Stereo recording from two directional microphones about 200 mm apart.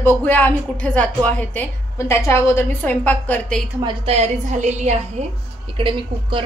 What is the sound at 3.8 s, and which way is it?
A woman's voice, 25° right (ahead or behind).